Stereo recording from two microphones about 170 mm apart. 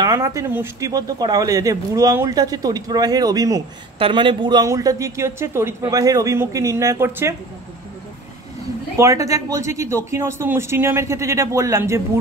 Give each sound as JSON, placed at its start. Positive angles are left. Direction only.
{"t": 0.0, "sound": "speech", "side_deg": -20}
{"t": 8.9, "sound": "a man's voice", "side_deg": -15}